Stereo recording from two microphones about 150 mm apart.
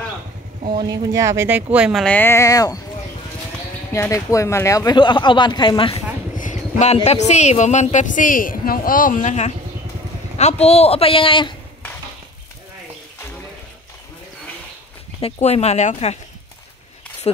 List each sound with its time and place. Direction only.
0.7 s speech: 25° right (ahead or behind); by 2.0 s 5° right (ahead or behind)
2.0 s speech: 15° left (ahead or behind)
3.9 s speech: 20° left (ahead or behind)
6.3 s a sound: 55° left (ahead or behind)
7.0 s a woman's voice: 45° left (ahead or behind)
15.1 s speech: 35° left (ahead or behind)
15.4 s a woman's voice: 45° left (ahead or behind)